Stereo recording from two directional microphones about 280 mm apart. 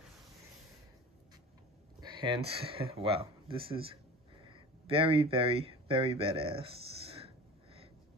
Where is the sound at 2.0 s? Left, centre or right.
Centre.